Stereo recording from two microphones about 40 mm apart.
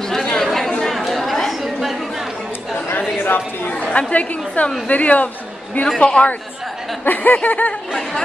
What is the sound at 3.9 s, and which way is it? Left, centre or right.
A woman's voice, left.